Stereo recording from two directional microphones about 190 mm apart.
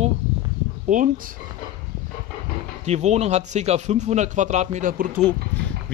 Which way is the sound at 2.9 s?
35° right (ahead or behind).